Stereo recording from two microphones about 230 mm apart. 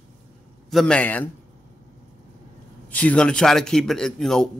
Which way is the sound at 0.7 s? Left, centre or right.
Centre.